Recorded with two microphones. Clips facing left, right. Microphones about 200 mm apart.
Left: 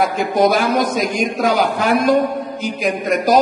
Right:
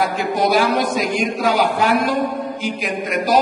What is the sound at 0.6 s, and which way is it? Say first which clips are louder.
A man's voice: left 1 dB; 40° left (ahead or behind).